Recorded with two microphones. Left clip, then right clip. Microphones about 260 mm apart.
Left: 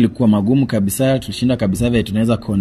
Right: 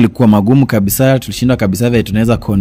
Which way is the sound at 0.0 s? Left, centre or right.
Right.